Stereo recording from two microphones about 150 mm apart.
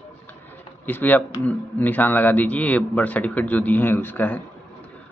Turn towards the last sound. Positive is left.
turn(degrees=10)  # may be behind; listen again after turning